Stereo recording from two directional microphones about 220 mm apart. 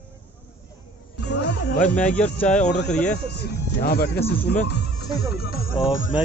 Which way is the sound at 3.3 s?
45° left (ahead or behind).